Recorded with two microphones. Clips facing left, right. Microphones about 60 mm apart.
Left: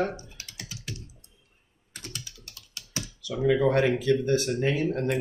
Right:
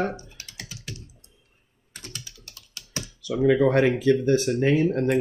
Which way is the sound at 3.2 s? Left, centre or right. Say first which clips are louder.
Right 4 dB; right.